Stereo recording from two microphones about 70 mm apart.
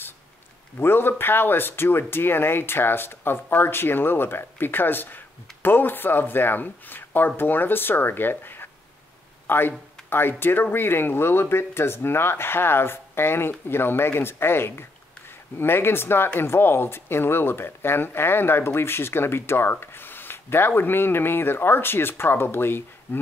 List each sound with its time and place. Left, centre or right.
0.7 s speech: left